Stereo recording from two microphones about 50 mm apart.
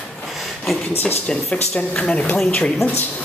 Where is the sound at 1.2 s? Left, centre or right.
Left.